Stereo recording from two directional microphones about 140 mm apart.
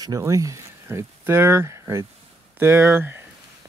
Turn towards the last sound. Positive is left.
turn(degrees=-15)  # may be behind; listen again after turning